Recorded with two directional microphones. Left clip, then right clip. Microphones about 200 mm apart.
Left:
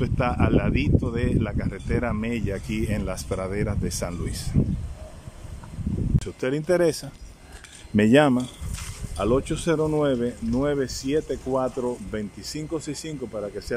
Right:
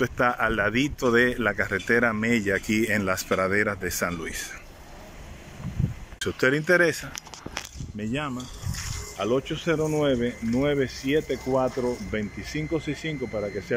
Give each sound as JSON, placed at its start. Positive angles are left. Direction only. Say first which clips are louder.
{"t": 0.0, "sound": "speech", "louder": "right 3 dB", "side_deg": 5}
{"t": 6.1, "sound": "speech", "louder": "right 5 dB", "side_deg": 10}
{"t": 7.9, "sound": "speech", "louder": "left 14 dB", "side_deg": 50}
{"t": 9.2, "sound": "speech", "louder": "left 2 dB", "side_deg": 15}